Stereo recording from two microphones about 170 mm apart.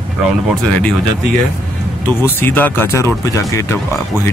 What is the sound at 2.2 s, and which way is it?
Speech, 15° left (ahead or behind).